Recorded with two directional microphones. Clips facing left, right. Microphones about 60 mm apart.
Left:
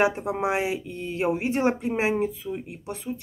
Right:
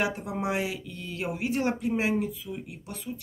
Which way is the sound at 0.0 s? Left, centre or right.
Left.